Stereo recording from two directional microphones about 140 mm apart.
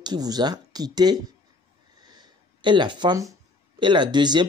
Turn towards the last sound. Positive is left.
turn(degrees=-30)  # may be behind; listen again after turning